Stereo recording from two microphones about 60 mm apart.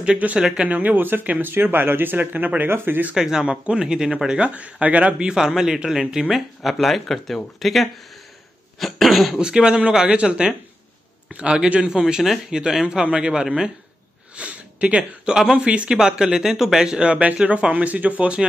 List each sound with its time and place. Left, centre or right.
0.0 s speech: centre
0.7 s speech: right
3.2 s speech: centre
5.3 s speech: centre
9.4 s speech: centre